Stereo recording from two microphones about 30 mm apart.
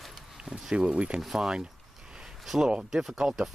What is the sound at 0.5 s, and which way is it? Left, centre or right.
Speech, right.